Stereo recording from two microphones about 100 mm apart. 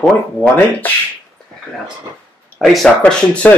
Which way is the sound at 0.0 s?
15° left (ahead or behind).